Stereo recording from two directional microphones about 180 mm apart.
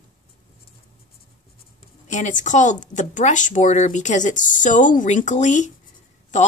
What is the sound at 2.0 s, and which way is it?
Speech, 40° left (ahead or behind).